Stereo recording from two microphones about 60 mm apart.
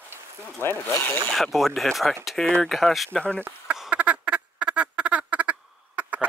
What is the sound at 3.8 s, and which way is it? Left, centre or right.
Duck, right.